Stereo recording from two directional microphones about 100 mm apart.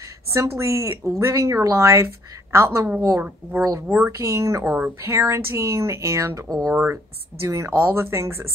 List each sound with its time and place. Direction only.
0.3 s speech: 25° right (ahead or behind)
3.2 s speech: 20° right (ahead or behind)
3.9 s speech: 30° right (ahead or behind)
4.7 s speech: 15° right (ahead or behind)
5.1 s speech: 30° right (ahead or behind)